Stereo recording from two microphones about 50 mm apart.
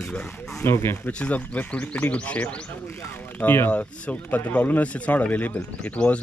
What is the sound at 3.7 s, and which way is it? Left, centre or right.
Speech, left.